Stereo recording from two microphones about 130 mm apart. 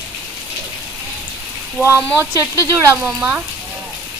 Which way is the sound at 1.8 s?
20° right (ahead or behind).